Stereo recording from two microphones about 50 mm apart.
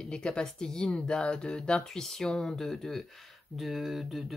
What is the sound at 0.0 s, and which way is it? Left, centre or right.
Speech, centre.